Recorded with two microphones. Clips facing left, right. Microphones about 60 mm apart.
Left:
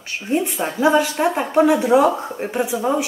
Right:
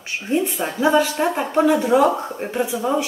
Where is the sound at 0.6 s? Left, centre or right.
Centre.